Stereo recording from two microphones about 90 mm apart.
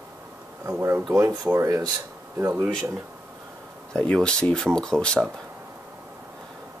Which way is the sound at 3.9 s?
10° left (ahead or behind).